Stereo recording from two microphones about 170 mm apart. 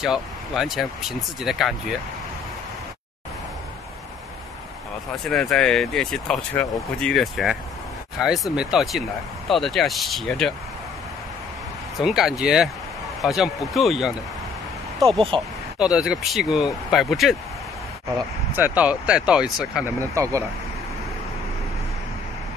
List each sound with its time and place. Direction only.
0.0 s speech: centre (ahead or behind)
5.2 s speech: centre (ahead or behind)
8.5 s speech: centre (ahead or behind)
12.0 s speech: centre (ahead or behind)
15.3 s speech: 30° right (ahead or behind)
15.8 s speech: 5° right (ahead or behind)
18.5 s speech: 10° right (ahead or behind)
20.0 s speech: 20° right (ahead or behind)